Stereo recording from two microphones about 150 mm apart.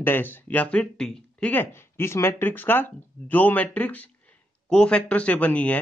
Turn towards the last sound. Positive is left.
turn(degrees=10)  # may be behind; listen again after turning